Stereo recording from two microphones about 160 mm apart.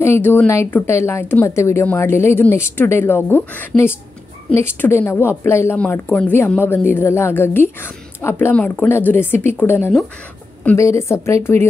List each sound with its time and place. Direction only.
0.0 s a woman's voice: 15° left (ahead or behind)